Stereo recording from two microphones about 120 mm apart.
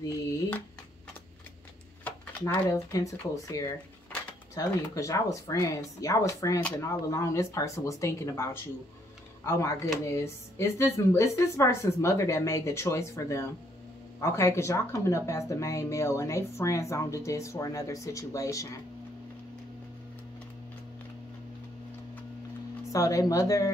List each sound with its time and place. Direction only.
2.1 s a sound: 10° left (ahead or behind)
2.4 s speech: 25° left (ahead or behind)
22.9 s speech: 30° left (ahead or behind)